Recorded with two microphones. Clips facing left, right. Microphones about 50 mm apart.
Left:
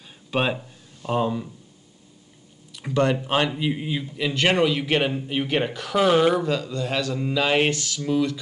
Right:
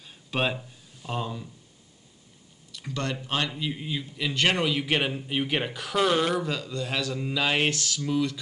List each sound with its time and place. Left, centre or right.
0.3 s a sound: centre
2.8 s a man's voice: centre
4.3 s speech: centre
6.0 s speech: centre
6.4 s speech: centre